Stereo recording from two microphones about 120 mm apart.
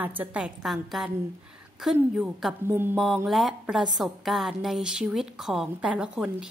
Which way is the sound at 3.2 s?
Centre (ahead or behind).